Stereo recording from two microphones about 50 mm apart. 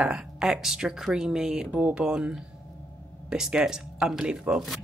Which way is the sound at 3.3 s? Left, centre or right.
Centre.